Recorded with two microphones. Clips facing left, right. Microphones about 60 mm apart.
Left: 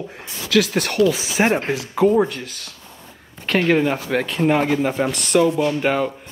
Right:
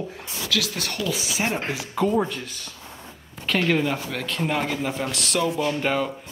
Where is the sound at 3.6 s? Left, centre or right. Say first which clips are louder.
Left 5 dB; left.